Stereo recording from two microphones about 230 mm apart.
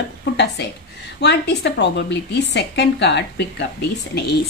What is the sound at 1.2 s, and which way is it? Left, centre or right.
A woman's voice, left.